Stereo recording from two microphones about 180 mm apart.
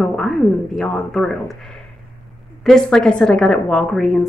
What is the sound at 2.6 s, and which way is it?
A woman's voice, 5° left (ahead or behind).